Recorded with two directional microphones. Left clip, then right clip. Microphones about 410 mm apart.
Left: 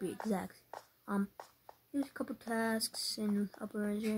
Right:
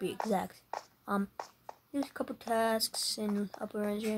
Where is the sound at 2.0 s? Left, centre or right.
Centre.